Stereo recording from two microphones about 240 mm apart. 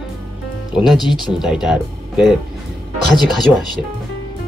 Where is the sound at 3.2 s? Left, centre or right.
Centre.